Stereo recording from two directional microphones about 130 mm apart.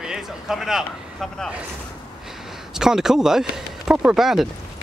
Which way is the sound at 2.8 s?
5° right (ahead or behind).